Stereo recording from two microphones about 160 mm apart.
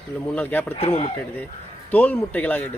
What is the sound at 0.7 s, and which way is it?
Speech, 40° left (ahead or behind).